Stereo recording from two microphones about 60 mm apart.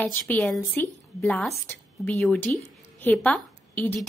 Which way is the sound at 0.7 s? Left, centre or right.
Left.